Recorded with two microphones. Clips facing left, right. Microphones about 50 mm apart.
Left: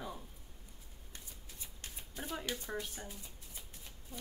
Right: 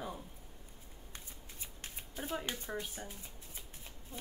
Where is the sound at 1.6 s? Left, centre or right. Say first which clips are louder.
Right 2 dB; right.